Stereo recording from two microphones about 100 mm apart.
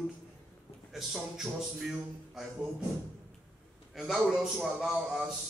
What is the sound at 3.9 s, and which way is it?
A man's voice, 5° right (ahead or behind).